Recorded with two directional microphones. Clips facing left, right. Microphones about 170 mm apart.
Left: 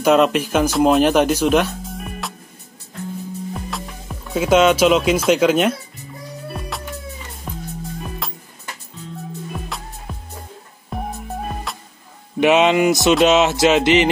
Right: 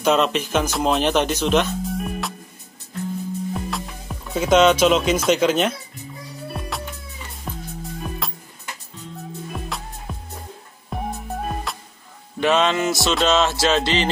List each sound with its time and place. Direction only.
0.0 s speech: 5° left (ahead or behind)
3.5 s speech: centre (ahead or behind)
7.5 s music: centre (ahead or behind)
9.5 s music: centre (ahead or behind)
12.4 s a sound: 15° left (ahead or behind)
13.2 s music: 20° left (ahead or behind)